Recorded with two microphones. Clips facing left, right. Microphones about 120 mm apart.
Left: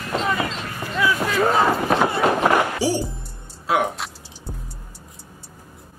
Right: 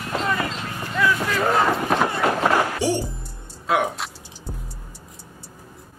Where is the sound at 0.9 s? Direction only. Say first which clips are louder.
Left 1 dB; 10° left (ahead or behind).